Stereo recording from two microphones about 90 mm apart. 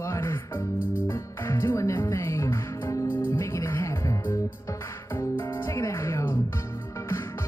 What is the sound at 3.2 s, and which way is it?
Music, 25° left (ahead or behind).